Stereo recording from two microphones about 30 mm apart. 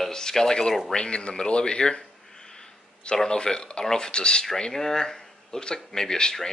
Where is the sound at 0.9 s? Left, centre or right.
Left.